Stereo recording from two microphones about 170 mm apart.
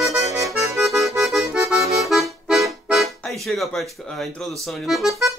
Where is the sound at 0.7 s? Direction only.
Centre (ahead or behind).